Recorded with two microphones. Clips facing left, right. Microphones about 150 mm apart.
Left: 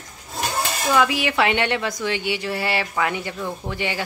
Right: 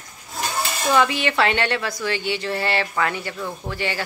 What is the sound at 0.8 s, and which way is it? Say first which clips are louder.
A woman's voice: right 1 dB; 5° left (ahead or behind).